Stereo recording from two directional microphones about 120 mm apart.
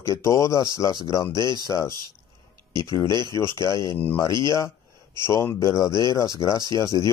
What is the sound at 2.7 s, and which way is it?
Speech, 40° right (ahead or behind).